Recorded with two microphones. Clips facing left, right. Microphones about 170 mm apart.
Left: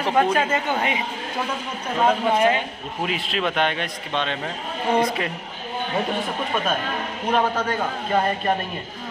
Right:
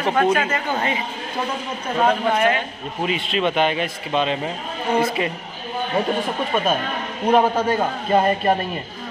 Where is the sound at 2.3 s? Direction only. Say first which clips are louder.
Even; 15° left (ahead or behind).